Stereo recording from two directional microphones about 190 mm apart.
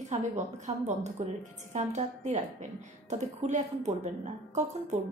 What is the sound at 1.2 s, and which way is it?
A woman's voice, 35° right (ahead or behind).